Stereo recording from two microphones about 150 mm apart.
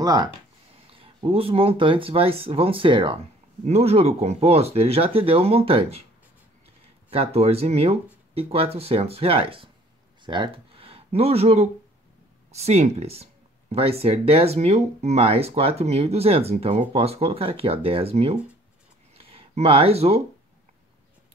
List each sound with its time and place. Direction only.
0.0 s speech: 25° right (ahead or behind)
0.8 s speech: 40° right (ahead or behind)
3.6 s speech: 45° right (ahead or behind)
7.1 s speech: 40° right (ahead or behind)
19.1 s a sound: 40° right (ahead or behind)